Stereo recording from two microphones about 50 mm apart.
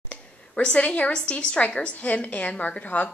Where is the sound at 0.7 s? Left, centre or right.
Left.